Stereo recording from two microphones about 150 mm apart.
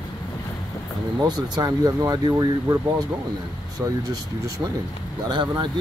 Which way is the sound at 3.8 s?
15° right (ahead or behind).